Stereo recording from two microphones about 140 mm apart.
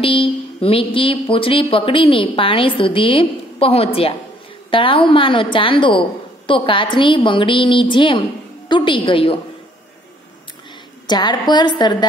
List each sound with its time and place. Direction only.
0.0 s speech: 40° left (ahead or behind)
11.1 s speech: 30° left (ahead or behind)